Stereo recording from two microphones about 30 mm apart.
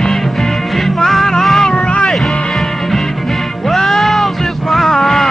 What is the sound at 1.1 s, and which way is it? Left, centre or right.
Music, centre.